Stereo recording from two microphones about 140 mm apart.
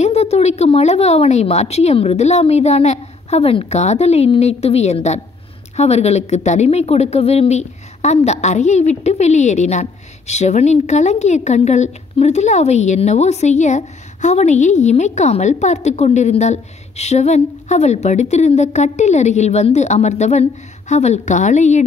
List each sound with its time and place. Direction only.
0.0 s a woman's voice: 50° left (ahead or behind)